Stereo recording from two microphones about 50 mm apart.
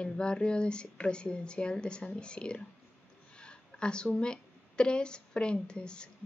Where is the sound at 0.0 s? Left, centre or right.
Centre.